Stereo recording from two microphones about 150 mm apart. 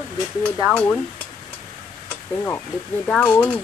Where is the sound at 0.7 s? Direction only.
10° left (ahead or behind).